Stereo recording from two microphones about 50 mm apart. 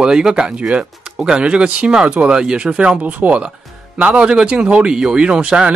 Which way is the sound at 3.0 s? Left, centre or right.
Right.